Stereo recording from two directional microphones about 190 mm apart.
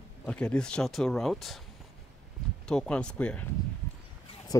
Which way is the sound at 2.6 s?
5° left (ahead or behind).